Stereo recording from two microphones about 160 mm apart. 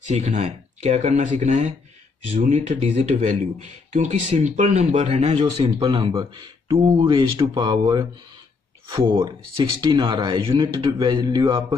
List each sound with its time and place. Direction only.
0.1 s speech: 40° right (ahead or behind); by 8.1 s 25° right (ahead or behind)
9.1 s speech: 30° right (ahead or behind)